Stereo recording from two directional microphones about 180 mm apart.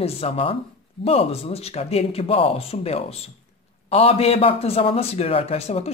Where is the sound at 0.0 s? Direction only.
30° left (ahead or behind).